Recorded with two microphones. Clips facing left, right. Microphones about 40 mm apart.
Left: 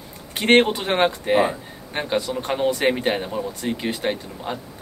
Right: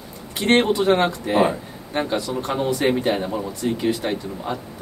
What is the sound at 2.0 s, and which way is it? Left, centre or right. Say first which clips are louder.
Speech: left 1 dB; left.